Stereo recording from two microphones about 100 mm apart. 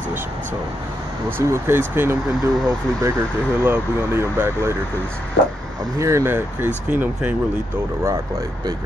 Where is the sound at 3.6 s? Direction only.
25° right (ahead or behind).